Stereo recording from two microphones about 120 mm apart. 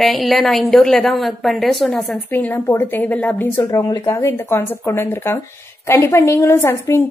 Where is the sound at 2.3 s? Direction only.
15° left (ahead or behind).